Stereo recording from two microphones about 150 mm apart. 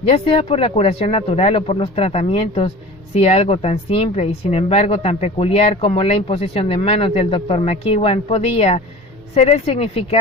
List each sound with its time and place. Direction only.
0.0 s a woman's voice: 40° left (ahead or behind)